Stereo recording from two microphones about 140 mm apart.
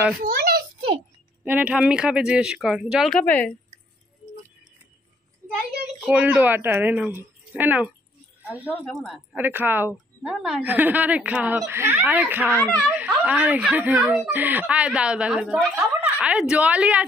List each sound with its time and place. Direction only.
0.2 s a sound: 90° right
1.4 s speech: 10° right (ahead or behind)
3.2 s speech: 10° left (ahead or behind)
6.0 s speech: 10° right (ahead or behind)
8.8 s a woman's voice: centre (ahead or behind)
9.4 s speech: 15° right (ahead or behind)
12.4 s speech: 10° left (ahead or behind)
12.9 s speech: 10° right (ahead or behind)